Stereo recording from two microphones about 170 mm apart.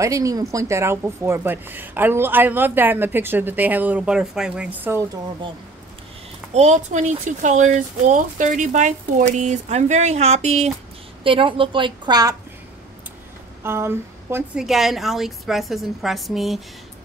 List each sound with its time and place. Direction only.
0.0 s a woman's voice: 20° right (ahead or behind)
6.5 s speech: 45° right (ahead or behind); by 12.4 s 25° right (ahead or behind)
13.6 s a woman's voice: 15° right (ahead or behind)
14.6 s a woman's voice: centre (ahead or behind)